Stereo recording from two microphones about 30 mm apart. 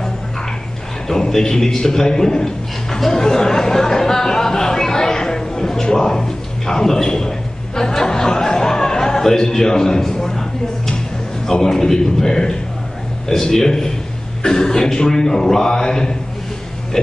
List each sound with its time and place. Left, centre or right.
1.3 s a man's voice: centre
14.4 s a man's voice: left